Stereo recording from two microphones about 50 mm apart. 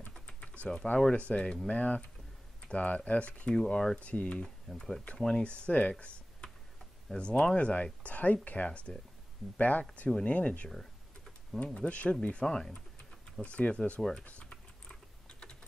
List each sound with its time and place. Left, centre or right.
0.3 s typing: left
0.9 s speech: left
4.0 s speech: left
4.4 s speech: centre
5.7 s speech: left
9.6 s speech: left
10.7 s computer keyboard: centre
11.6 s speech: left
13.4 s speech: left
14.4 s typing: centre